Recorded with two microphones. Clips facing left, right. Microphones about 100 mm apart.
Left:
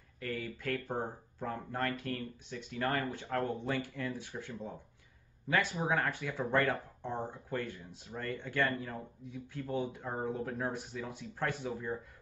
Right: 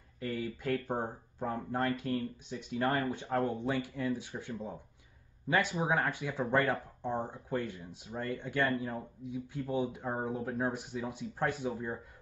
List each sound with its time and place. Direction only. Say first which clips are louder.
0.2 s speech: right 3 dB; 20° right (ahead or behind)